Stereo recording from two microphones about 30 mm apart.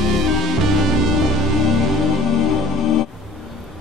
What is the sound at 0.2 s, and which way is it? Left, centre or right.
Music, centre.